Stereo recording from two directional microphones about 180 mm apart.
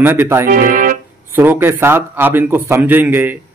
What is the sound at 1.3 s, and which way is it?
Speech, 10° right (ahead or behind).